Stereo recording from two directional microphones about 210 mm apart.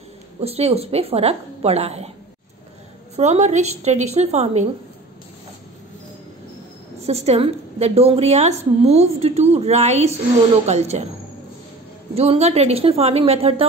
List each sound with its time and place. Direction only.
0.4 s a woman's voice: 30° right (ahead or behind)
3.2 s a woman's voice: 30° right (ahead or behind)
7.0 s a woman's voice: 30° right (ahead or behind)
12.2 s a woman's voice: 30° right (ahead or behind)